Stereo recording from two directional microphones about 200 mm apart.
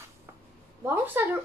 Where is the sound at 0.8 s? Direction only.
10° right (ahead or behind).